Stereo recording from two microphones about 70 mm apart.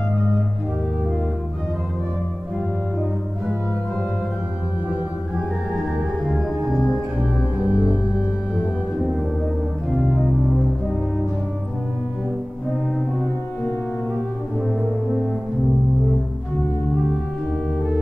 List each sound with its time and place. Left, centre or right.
6.3 s music: centre
7.2 s music: right
9.9 s organ: left